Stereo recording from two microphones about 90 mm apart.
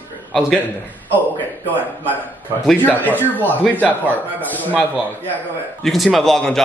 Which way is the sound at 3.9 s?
20° right (ahead or behind).